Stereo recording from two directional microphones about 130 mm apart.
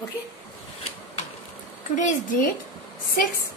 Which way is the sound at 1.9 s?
85° left.